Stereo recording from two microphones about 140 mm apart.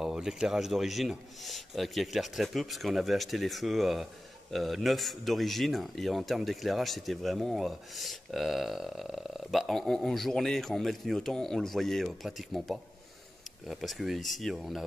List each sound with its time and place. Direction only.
0.0 s a man's voice: 5° right (ahead or behind)